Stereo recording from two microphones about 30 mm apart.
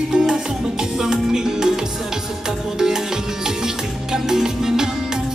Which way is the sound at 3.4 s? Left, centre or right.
Centre.